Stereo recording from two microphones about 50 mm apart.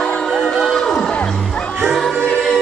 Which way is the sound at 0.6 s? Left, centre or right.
Centre.